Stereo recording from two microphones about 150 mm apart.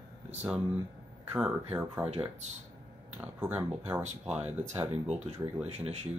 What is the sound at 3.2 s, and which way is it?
Speech, 10° right (ahead or behind).